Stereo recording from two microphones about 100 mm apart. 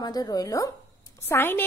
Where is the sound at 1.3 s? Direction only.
20° left (ahead or behind).